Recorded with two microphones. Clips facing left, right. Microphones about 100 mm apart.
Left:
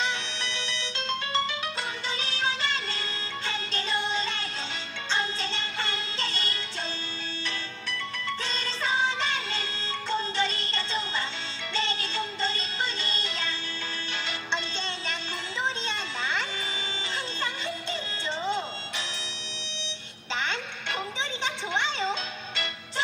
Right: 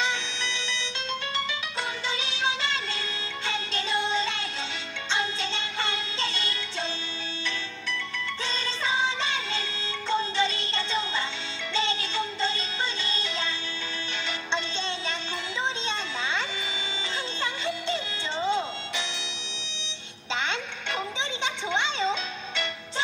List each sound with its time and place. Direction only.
2.2 s music: 20° right (ahead or behind)
5.5 s music: 20° right (ahead or behind)
8.5 s music: 20° right (ahead or behind)
15.8 s a sound: 20° right (ahead or behind)
17.4 s music: 25° right (ahead or behind)
21.6 s music: 20° right (ahead or behind)